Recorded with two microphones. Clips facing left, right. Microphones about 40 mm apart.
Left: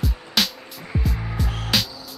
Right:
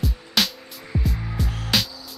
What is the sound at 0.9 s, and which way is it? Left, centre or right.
Music, left.